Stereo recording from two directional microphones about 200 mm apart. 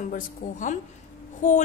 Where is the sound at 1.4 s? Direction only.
35° left (ahead or behind).